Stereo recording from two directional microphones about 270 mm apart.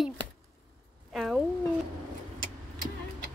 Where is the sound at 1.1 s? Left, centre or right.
Centre.